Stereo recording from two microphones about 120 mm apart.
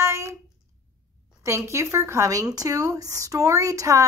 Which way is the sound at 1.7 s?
25° right (ahead or behind).